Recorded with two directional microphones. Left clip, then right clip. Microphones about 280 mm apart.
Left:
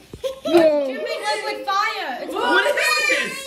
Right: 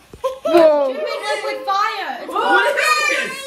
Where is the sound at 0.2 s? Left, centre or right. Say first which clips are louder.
Right 5 dB; centre.